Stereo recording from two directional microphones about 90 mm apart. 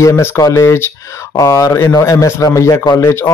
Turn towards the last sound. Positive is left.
turn(degrees=30)  # may be behind; listen again after turning